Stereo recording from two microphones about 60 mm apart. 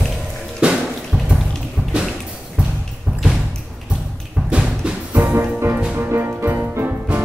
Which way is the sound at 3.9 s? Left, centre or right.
Centre.